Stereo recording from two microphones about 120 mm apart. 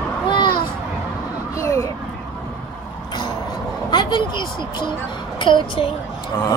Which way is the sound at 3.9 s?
40° left (ahead or behind).